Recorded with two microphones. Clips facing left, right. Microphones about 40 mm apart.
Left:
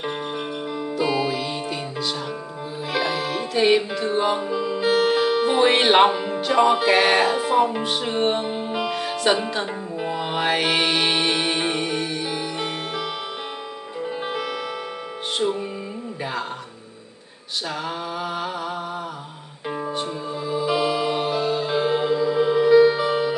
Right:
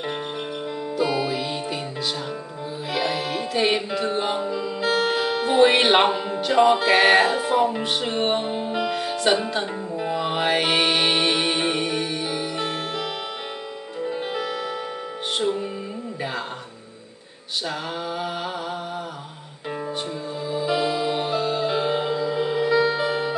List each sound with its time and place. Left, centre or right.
0.7 s music: centre
4.5 s music: left
4.8 s speech: centre
7.8 s music: centre
8.5 s music: centre
14.0 s music: centre
15.4 s music: centre
17.6 s mantra: centre
20.4 s music: centre